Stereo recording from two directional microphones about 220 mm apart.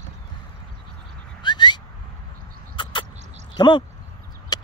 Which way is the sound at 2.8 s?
20° left (ahead or behind).